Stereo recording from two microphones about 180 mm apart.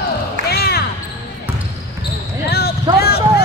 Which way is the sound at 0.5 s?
60° left (ahead or behind).